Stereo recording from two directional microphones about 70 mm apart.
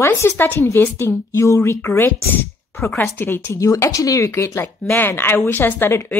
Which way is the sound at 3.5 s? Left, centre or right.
Left.